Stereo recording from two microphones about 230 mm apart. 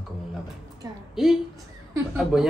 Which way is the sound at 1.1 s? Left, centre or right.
Centre.